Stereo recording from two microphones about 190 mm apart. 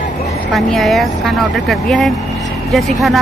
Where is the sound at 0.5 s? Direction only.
Centre (ahead or behind).